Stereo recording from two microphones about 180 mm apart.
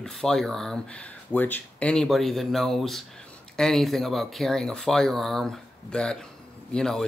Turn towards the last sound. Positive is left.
turn(degrees=0)  # may be behind; listen again after turning